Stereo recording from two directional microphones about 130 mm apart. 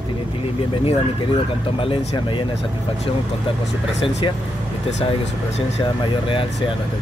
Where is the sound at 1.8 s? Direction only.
45° left (ahead or behind).